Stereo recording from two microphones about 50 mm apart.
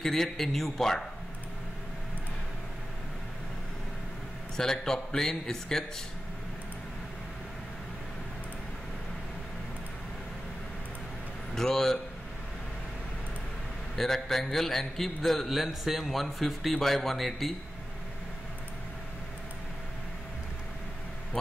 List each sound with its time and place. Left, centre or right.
0.0 s a man's voice: centre
4.6 s a man's voice: centre
11.5 s a man's voice: centre
13.9 s a man's voice: centre